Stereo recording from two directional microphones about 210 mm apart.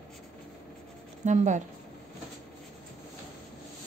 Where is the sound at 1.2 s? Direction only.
35° right (ahead or behind).